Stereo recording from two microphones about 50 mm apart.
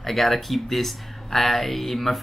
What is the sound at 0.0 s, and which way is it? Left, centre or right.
Speech, centre.